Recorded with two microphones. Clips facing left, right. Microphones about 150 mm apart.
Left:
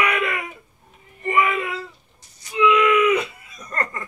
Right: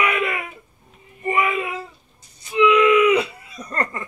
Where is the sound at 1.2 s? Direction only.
10° right (ahead or behind).